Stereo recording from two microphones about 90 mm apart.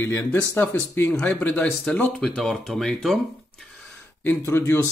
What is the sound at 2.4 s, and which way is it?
Speech, 5° left (ahead or behind).